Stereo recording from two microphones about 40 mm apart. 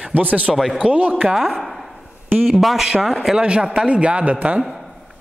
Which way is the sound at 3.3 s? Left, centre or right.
Right.